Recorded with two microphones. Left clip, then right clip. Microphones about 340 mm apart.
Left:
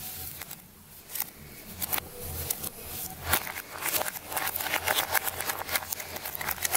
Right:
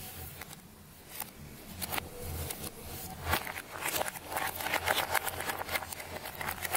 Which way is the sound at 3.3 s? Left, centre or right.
Centre.